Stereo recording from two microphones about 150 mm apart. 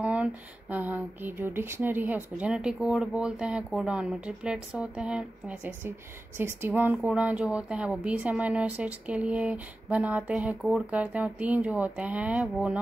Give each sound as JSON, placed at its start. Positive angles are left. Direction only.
{"t": 0.0, "sound": "speech", "side_deg": -10}